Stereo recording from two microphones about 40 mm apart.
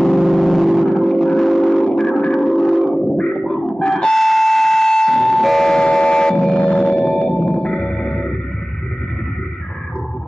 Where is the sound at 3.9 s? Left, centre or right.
Centre.